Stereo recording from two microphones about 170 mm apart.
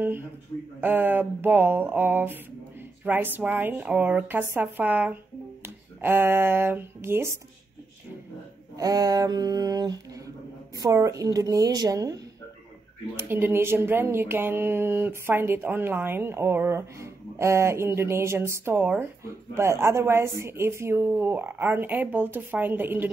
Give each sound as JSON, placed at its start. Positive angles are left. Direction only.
{"t": 0.7, "sound": "speech", "side_deg": -10}
{"t": 8.7, "sound": "a woman's voice", "side_deg": -20}
{"t": 13.2, "sound": "speech", "side_deg": -15}